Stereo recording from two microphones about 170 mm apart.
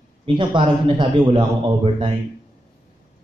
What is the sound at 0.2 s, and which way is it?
A man's voice, 30° right (ahead or behind).